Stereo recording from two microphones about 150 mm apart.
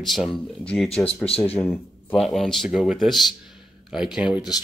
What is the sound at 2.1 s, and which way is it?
Speech, centre (ahead or behind).